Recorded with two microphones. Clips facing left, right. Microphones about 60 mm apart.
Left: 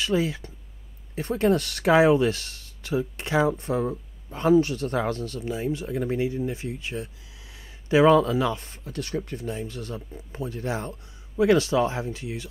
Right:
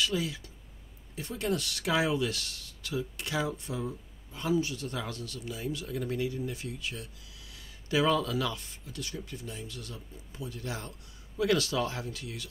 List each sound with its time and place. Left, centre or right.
0.0 s speech: left
8.6 s speech: left